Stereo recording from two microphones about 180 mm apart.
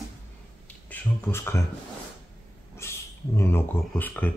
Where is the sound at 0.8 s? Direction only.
10° left (ahead or behind).